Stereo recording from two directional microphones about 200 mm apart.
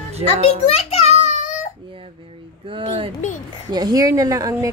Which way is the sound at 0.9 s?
35° left (ahead or behind).